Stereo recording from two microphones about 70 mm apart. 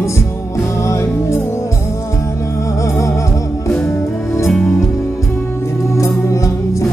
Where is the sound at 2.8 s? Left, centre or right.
Left.